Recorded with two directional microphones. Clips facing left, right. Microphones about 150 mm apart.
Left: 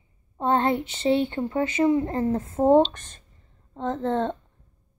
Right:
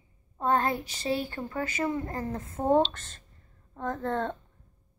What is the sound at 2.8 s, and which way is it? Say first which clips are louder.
Speech: left 4 dB; 15° left (ahead or behind).